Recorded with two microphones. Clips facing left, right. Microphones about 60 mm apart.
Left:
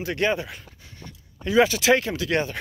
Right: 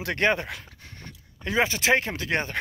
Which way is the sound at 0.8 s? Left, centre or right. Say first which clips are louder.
Even; right.